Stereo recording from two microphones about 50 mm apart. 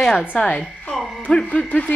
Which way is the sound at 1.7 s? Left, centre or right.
Left.